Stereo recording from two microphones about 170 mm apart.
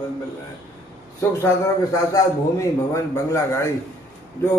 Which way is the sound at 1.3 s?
15° left (ahead or behind).